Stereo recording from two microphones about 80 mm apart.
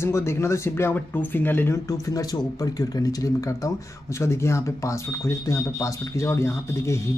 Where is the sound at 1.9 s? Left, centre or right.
Left.